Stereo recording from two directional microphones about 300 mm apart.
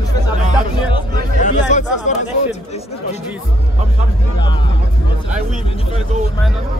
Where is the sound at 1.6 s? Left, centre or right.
Left.